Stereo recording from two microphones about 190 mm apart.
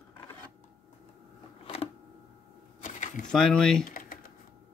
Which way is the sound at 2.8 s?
45° left (ahead or behind).